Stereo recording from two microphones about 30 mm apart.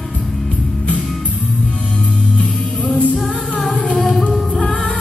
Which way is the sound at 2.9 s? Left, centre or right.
Left.